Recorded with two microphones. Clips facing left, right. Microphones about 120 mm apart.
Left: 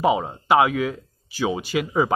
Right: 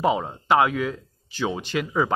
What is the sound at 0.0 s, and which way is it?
Speech, 5° left (ahead or behind).